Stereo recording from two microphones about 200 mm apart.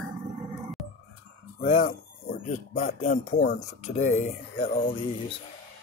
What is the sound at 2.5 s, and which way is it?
Speech, 40° left (ahead or behind).